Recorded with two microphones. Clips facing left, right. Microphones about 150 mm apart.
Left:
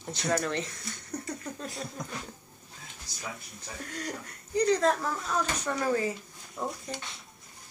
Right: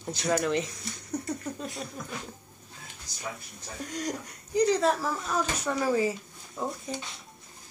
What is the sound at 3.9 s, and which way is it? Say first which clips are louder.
Speech: right 4 dB; 15° right (ahead or behind).